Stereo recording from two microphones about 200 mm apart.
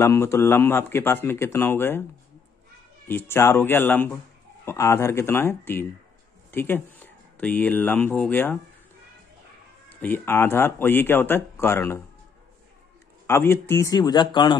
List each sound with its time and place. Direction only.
0.0 s speech: 15° left (ahead or behind)
3.1 s speech: 10° left (ahead or behind)
10.0 s speech: 10° left (ahead or behind)
13.3 s speech: 10° left (ahead or behind)